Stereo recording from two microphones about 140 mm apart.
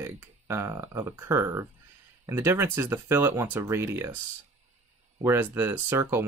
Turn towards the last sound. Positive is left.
turn(degrees=-15)  # may be behind; listen again after turning